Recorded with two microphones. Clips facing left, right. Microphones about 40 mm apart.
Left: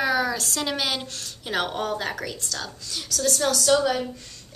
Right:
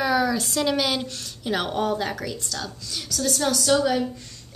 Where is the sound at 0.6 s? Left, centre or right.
Centre.